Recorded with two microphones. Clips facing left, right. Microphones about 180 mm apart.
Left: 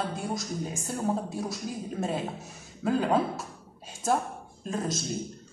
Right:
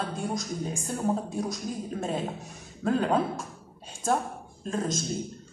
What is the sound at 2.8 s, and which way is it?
Speech, 5° left (ahead or behind).